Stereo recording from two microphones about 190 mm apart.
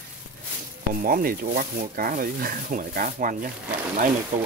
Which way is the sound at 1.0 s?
50° right (ahead or behind).